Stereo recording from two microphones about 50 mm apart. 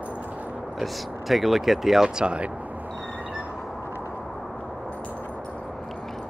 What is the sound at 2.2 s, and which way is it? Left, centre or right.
Speech, right.